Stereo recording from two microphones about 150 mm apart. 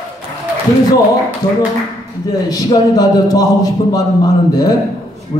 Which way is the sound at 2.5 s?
25° left (ahead or behind).